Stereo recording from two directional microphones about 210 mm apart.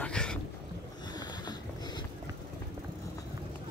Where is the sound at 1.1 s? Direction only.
20° left (ahead or behind).